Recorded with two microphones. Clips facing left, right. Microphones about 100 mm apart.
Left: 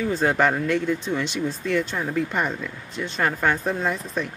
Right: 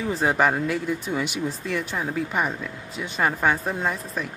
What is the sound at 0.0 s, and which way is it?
Speech, 10° right (ahead or behind).